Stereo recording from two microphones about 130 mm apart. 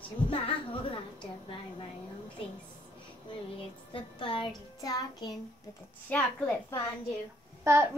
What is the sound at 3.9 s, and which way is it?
A woman's voice, 40° left (ahead or behind).